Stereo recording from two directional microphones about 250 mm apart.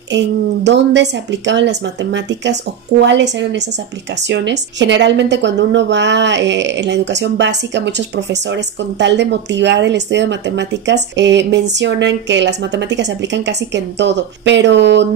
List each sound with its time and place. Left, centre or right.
0.7 s a woman's voice: right